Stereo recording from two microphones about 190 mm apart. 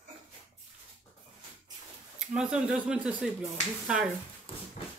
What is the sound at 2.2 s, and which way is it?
Speech, 5° right (ahead or behind).